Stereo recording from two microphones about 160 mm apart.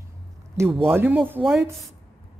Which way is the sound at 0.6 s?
15° right (ahead or behind).